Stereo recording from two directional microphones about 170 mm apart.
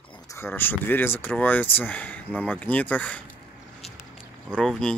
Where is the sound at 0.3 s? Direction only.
15° left (ahead or behind).